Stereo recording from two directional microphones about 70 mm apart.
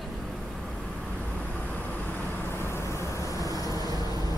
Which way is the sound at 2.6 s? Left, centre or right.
Left.